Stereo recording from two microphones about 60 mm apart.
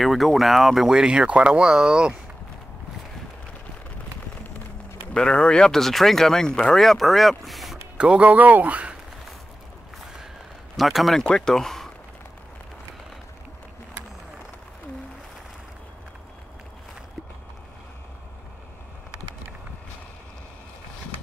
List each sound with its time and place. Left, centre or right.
0.0 s speech: centre
5.1 s speech: centre
8.0 s speech: right
10.8 s speech: centre
11.2 s speech: centre